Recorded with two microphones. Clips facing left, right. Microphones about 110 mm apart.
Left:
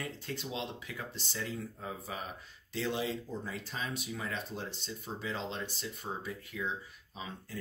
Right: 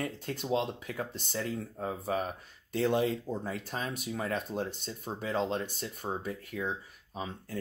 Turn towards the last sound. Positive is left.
turn(degrees=-45)  # may be behind; listen again after turning